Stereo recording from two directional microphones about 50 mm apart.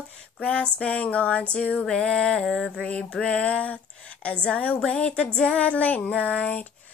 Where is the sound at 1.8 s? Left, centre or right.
Centre.